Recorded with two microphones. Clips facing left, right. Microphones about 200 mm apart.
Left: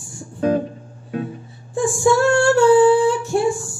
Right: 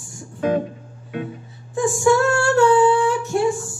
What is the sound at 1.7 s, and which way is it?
Female singing, 30° left (ahead or behind).